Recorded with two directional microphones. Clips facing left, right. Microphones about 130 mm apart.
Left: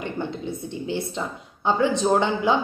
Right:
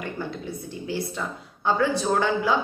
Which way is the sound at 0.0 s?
20° left (ahead or behind).